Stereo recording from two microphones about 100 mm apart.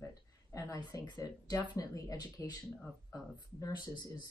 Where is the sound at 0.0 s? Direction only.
30° left (ahead or behind).